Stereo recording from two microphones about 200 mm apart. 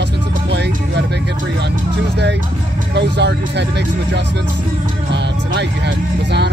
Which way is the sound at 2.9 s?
60° right (ahead or behind).